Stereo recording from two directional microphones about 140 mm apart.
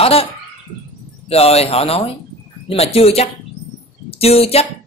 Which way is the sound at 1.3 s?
45° left (ahead or behind).